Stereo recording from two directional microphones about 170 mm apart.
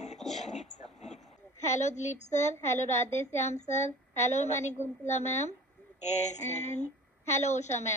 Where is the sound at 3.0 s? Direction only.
40° left (ahead or behind).